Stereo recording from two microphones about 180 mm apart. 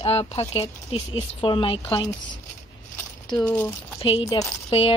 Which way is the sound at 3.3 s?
5° left (ahead or behind).